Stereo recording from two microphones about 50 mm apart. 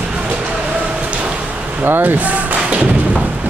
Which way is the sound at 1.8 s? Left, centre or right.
Right.